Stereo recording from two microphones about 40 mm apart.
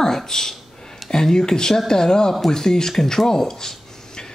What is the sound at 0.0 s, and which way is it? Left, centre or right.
A woman's voice, centre.